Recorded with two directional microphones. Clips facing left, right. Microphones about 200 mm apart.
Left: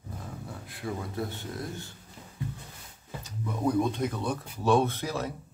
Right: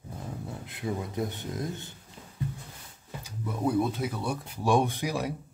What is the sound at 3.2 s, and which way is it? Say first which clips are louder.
Speech: even; 5° right (ahead or behind).